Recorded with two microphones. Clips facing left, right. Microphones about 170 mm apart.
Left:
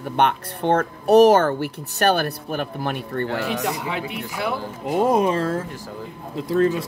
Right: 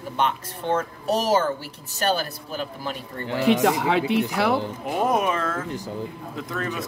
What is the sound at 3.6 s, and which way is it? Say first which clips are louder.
Speech: right 6 dB; 70° right (ahead or behind).